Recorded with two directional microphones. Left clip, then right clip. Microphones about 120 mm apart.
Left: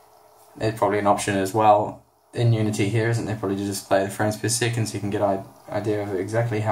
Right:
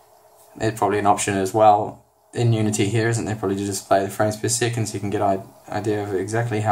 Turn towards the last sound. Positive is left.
turn(degrees=-45)  # may be behind; listen again after turning